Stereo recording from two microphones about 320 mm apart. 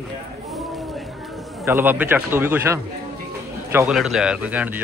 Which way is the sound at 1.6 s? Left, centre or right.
Centre.